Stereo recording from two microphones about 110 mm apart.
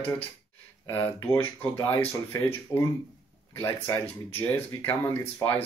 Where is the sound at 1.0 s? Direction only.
20° left (ahead or behind).